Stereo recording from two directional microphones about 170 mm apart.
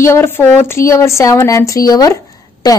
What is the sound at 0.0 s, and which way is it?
A woman's voice, 15° left (ahead or behind).